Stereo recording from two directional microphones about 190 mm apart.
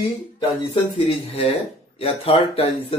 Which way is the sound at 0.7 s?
30° left (ahead or behind).